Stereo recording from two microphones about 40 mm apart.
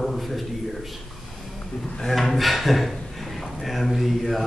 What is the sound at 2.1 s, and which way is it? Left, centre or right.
Speech, centre.